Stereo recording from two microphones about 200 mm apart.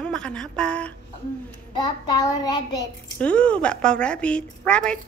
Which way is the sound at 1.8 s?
20° left (ahead or behind).